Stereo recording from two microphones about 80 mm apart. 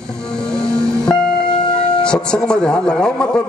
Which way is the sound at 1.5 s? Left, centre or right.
Left.